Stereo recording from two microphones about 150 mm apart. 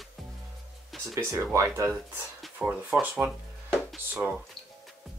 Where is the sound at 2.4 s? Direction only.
5° right (ahead or behind).